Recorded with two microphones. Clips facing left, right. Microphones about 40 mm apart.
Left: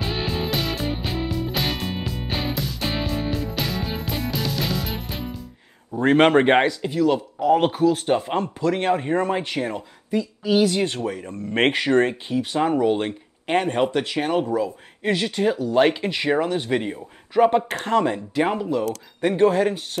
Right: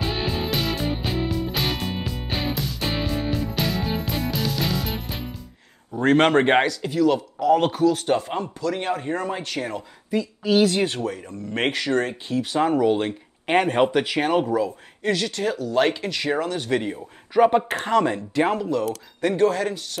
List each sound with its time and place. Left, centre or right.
0.0 s music: centre
6.0 s speech: centre
6.8 s speech: centre
8.4 s speech: left
10.6 s speech: centre
11.1 s speech: left
12.8 s speech: centre
13.5 s speech: centre
13.8 s speech: centre
15.0 s speech: left
16.9 s speech: centre
17.9 s speech: centre